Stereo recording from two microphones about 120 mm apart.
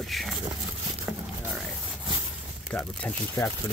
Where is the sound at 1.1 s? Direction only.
20° right (ahead or behind).